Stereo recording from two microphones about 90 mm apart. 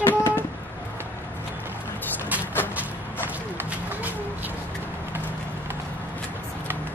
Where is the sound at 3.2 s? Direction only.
20° right (ahead or behind).